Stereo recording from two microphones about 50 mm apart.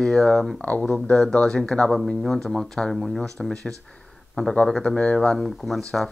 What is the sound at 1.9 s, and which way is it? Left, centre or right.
Speech, centre.